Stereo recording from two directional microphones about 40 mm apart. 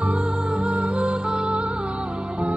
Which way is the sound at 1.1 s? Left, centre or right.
Right.